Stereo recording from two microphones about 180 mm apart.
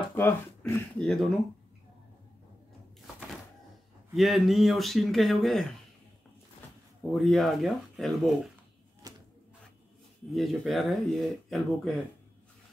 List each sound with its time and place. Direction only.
0.1 s speech: 10° left (ahead or behind)
4.1 s speech: centre (ahead or behind)
7.1 s speech: centre (ahead or behind)
9.0 s a sound: 20° right (ahead or behind)
10.3 s speech: centre (ahead or behind)